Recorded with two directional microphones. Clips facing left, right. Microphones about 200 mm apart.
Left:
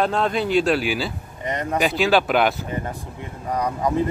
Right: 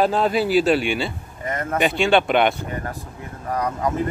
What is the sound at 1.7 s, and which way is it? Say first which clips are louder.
Speech: right 1 dB; centre (ahead or behind).